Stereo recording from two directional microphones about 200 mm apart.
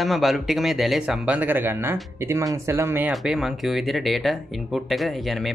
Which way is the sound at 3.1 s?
Centre (ahead or behind).